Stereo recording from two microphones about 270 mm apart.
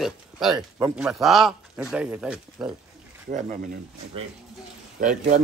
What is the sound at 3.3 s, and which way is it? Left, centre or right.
Speech, right.